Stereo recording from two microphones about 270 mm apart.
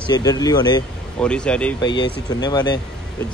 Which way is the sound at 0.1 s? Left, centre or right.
Centre.